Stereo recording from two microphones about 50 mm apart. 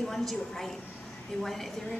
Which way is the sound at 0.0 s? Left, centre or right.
Centre.